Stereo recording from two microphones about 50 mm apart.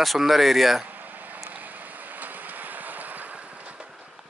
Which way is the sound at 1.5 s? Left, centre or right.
Right.